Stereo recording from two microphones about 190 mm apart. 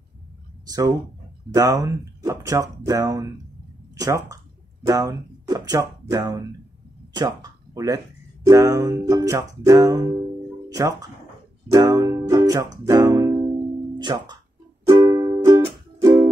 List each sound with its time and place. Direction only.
0.7 s speech: 20° right (ahead or behind)
11.7 s music: 20° right (ahead or behind)